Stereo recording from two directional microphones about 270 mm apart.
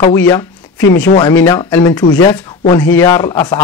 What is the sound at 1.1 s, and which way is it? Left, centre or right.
Speech, left.